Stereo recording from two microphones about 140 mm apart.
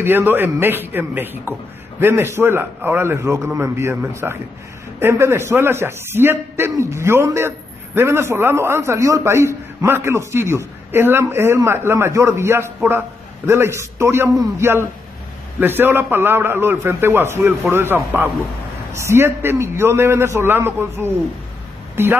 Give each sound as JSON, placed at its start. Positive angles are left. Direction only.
{"t": 0.0, "sound": "a man's voice", "side_deg": -15}